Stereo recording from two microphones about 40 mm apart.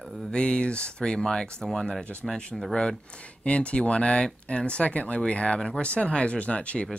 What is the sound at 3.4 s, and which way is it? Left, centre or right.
Speech, left.